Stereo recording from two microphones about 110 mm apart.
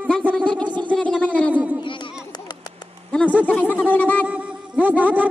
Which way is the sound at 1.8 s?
50° left (ahead or behind).